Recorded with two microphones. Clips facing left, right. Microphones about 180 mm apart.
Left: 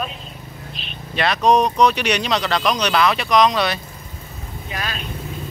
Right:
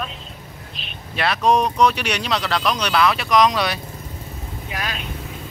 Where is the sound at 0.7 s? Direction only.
5° right (ahead or behind).